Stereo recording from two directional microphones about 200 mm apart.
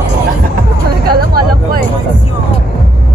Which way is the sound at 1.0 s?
50° right (ahead or behind).